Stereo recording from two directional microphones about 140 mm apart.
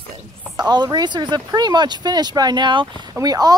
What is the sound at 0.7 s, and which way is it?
Speech, 30° right (ahead or behind).